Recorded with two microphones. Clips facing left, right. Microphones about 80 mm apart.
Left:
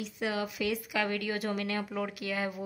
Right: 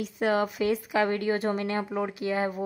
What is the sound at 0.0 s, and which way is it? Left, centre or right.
A woman's voice, right.